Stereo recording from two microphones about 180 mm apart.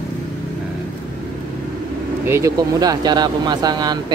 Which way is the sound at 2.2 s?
15° right (ahead or behind).